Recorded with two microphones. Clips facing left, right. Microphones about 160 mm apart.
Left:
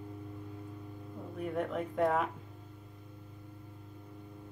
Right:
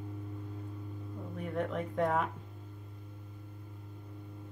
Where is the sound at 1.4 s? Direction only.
5° left (ahead or behind).